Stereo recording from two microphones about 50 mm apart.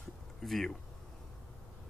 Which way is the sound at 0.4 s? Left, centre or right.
Centre.